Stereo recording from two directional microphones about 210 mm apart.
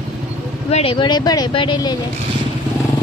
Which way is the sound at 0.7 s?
25° left (ahead or behind).